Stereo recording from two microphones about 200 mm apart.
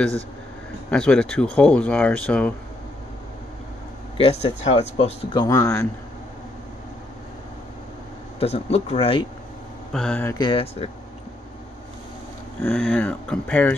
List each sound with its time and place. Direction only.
0.8 s speech: 5° left (ahead or behind)
4.2 s speech: 30° left (ahead or behind); by 5.9 s 15° left (ahead or behind)
8.4 s speech: 30° left (ahead or behind)
9.9 s speech: 5° left (ahead or behind)
10.3 s speech: 25° left (ahead or behind)
12.6 s speech: 5° left (ahead or behind)